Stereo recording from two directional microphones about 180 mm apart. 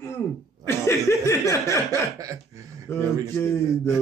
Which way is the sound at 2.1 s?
20° right (ahead or behind).